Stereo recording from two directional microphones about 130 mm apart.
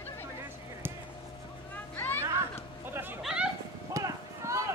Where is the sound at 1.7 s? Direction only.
15° left (ahead or behind).